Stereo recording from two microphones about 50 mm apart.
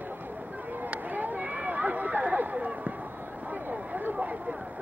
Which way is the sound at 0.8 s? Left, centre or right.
Right.